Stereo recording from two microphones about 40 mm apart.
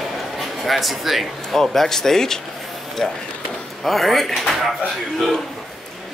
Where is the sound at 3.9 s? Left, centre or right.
Centre.